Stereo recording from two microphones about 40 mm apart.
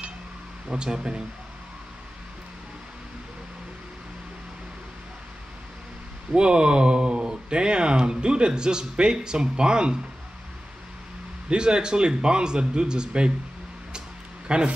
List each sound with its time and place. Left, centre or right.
0.7 s speech: centre
6.3 s speech: right
11.4 s speech: right
14.5 s speech: right